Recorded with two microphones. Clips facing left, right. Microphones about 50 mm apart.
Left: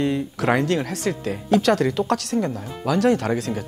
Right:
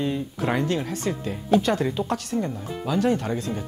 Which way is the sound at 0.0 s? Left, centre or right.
Left.